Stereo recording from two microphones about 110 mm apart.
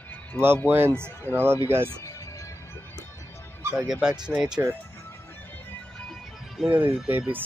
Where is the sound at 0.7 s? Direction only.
20° right (ahead or behind).